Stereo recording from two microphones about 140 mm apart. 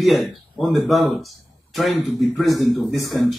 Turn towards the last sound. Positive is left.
turn(degrees=0)  # may be behind; listen again after turning